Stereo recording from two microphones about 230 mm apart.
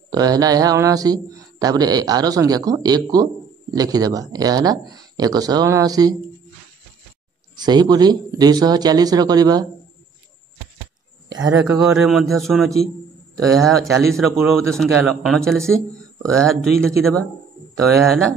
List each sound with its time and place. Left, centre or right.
0.1 s a man's voice: centre
7.5 s a man's voice: centre
11.5 s speech: centre